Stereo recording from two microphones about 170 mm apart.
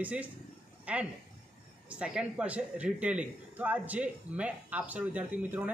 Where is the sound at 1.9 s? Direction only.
5° right (ahead or behind).